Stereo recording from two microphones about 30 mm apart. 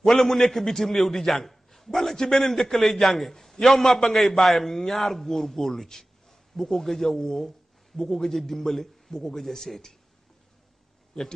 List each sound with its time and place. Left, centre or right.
0.1 s a man's voice: centre
9.1 s a man's voice: centre